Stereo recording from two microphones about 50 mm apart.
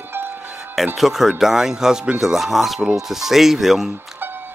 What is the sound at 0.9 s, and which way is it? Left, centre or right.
Speech, centre.